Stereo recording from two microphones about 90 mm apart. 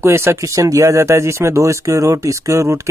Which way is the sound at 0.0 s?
30° right (ahead or behind).